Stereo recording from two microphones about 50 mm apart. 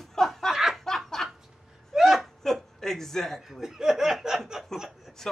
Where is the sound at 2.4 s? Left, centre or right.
Centre.